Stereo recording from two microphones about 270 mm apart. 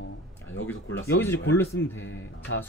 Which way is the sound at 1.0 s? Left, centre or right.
Centre.